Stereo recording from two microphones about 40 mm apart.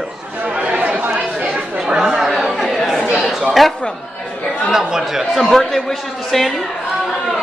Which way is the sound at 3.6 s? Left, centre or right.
Centre.